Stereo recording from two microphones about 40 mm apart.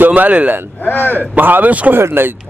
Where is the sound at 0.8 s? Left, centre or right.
Left.